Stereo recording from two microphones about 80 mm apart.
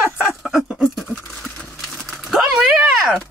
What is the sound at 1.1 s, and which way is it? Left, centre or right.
Patter, centre.